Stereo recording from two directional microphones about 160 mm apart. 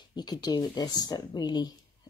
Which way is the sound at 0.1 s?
25° left (ahead or behind).